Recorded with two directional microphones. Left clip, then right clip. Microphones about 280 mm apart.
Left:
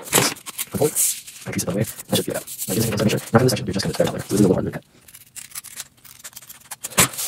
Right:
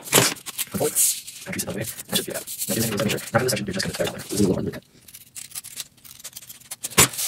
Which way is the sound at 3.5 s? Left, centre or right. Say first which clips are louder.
Left 1 dB; centre.